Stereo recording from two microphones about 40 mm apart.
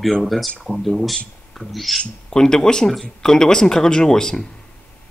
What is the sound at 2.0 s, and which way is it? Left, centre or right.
Speech, centre.